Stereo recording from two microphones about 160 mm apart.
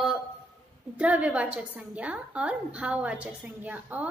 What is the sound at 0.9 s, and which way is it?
A woman's voice, 10° right (ahead or behind).